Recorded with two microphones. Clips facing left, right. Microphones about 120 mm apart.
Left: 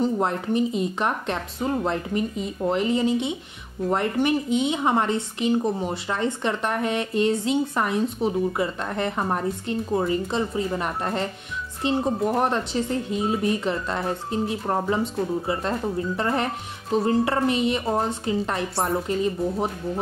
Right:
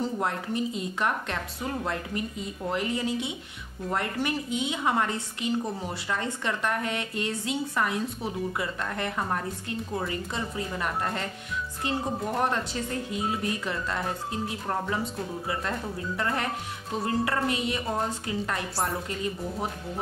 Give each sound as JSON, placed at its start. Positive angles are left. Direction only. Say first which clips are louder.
{"t": 0.0, "sound": "speech", "louder": "left 6 dB", "side_deg": 20}